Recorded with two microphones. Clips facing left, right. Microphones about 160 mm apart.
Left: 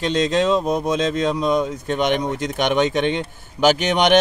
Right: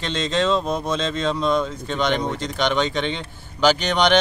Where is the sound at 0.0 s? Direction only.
10° left (ahead or behind).